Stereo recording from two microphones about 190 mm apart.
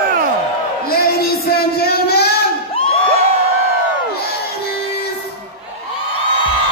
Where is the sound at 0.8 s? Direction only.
55° left (ahead or behind).